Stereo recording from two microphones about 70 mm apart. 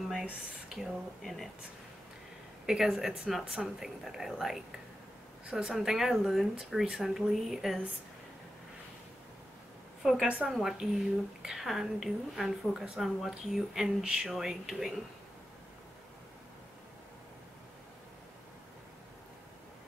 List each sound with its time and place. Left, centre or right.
0.7 s speech: centre
2.6 s speech: centre
10.2 s speech: centre
10.5 s speech: centre